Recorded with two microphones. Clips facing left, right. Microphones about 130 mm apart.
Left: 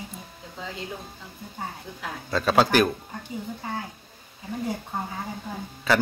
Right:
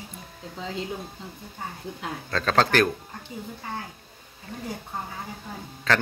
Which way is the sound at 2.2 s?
10° left (ahead or behind).